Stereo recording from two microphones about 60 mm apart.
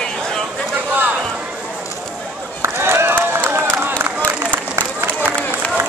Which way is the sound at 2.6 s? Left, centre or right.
Right.